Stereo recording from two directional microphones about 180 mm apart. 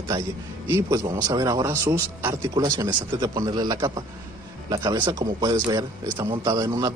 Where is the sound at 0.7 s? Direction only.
15° right (ahead or behind).